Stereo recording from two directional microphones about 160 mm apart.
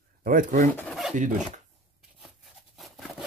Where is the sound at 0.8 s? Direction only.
Centre (ahead or behind).